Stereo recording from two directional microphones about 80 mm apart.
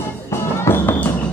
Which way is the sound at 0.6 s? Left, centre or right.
Left.